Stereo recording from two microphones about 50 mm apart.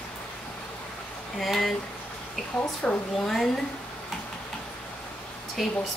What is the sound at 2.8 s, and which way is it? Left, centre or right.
Speech, centre.